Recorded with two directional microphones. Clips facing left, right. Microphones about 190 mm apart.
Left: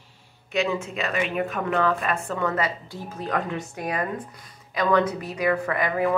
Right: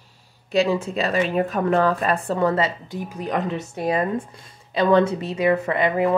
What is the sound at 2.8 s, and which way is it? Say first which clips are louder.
Speech: right 3 dB; 15° right (ahead or behind).